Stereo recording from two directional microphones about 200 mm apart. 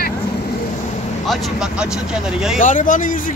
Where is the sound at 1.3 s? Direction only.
Centre (ahead or behind).